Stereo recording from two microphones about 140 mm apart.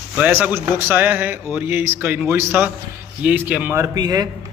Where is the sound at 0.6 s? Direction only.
15° right (ahead or behind).